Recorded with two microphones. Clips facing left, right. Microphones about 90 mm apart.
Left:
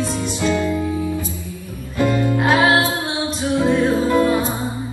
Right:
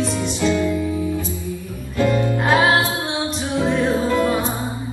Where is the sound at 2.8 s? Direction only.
20° right (ahead or behind).